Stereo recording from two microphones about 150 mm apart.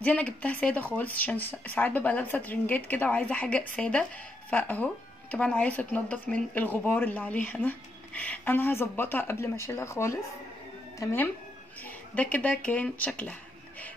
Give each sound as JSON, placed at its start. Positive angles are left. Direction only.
{"t": 0.0, "sound": "speech", "side_deg": 10}